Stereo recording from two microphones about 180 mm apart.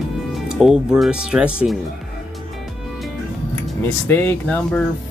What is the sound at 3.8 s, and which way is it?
Speech, 10° left (ahead or behind).